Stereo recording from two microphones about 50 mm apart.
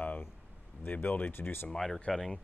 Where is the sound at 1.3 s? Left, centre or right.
Left.